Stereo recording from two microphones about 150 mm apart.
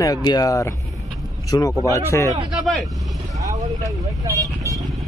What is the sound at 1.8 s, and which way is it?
Speech, 20° left (ahead or behind).